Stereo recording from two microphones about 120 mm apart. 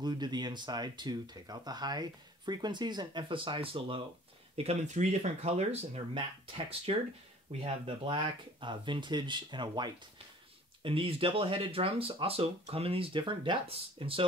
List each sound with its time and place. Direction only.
0.0 s speech: 35° right (ahead or behind)
4.6 s speech: 65° right (ahead or behind)
6.1 s speech: 45° right (ahead or behind)